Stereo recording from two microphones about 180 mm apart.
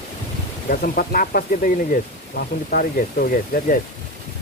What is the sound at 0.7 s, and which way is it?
Speech, 55° left (ahead or behind).